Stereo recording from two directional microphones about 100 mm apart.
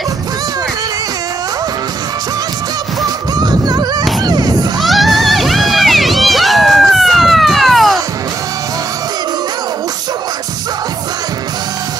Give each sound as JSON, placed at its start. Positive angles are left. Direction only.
{"t": 3.3, "sound": "music", "side_deg": -40}
{"t": 4.2, "sound": "a sound", "side_deg": -40}
{"t": 4.7, "sound": "crowd", "side_deg": 0}